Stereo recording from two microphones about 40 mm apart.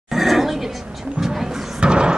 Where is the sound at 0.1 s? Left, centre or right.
Centre.